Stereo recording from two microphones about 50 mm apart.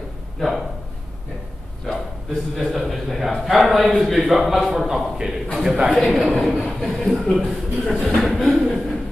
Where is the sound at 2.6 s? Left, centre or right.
Centre.